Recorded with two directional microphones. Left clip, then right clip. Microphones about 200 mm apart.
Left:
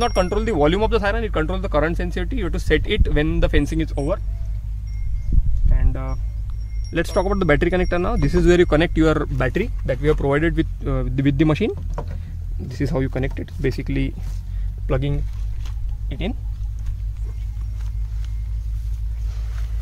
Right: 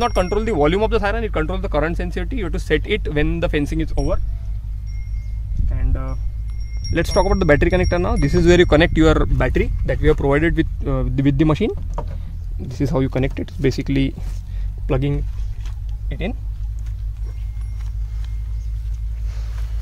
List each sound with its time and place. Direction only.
0.0 s speech: 15° right (ahead or behind); by 4.2 s centre (ahead or behind)
5.7 s a sound: centre (ahead or behind)
6.9 s speech: 30° right (ahead or behind)
11.9 s speech: 5° left (ahead or behind)
12.5 s speech: 20° right (ahead or behind); by 14.1 s 45° right (ahead or behind)
14.9 s speech: 30° right (ahead or behind)